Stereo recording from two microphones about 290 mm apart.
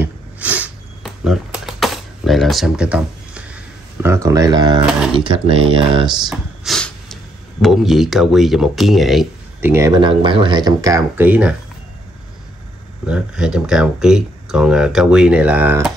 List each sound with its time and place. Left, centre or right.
0.0 s a sound: centre
5.1 s speech: centre
6.3 s snort: centre
7.6 s speech: centre
13.0 s speech: centre